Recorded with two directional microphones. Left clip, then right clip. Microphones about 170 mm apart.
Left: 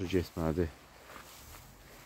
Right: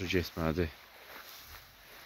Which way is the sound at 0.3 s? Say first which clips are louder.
Even; 15° left (ahead or behind).